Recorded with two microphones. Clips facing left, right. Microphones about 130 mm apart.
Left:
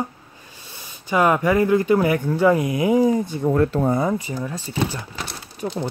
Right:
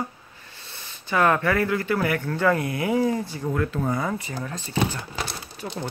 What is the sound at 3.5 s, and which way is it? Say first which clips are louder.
Speech: left 6 dB; 35° left (ahead or behind).